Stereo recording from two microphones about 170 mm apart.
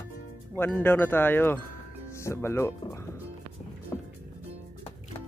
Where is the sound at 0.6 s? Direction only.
10° left (ahead or behind).